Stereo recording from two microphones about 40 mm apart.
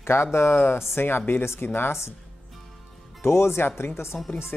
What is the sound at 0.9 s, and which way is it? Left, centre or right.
Speech, left.